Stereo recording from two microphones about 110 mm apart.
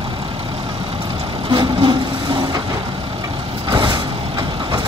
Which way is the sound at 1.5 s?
45° right (ahead or behind).